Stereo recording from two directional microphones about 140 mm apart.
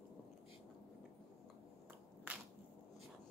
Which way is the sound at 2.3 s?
10° right (ahead or behind).